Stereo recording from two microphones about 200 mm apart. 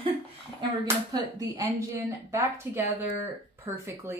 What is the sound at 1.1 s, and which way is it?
Speech, 20° right (ahead or behind).